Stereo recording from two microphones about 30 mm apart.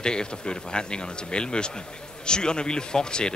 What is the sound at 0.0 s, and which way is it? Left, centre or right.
A man's voice, left.